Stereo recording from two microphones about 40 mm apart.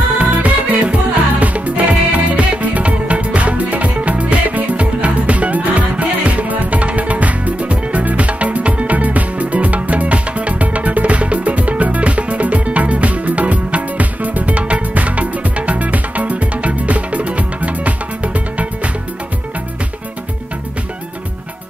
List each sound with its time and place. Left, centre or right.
0.2 s music: right